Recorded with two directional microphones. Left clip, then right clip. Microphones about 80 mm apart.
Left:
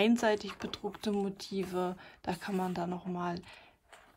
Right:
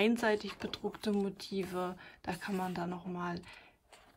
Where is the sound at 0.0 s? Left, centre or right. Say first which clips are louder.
Left 2 dB; centre.